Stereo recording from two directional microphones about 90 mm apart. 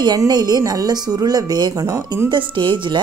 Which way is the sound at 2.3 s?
60° right (ahead or behind).